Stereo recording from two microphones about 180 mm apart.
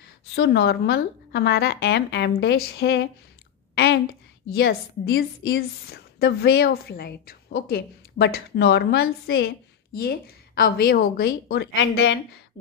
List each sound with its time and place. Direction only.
0.4 s a woman's voice: 65° left (ahead or behind)